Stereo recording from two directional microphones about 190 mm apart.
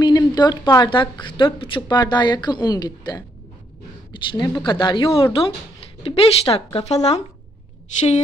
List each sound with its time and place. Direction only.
0.0 s a woman's voice: 20° left (ahead or behind)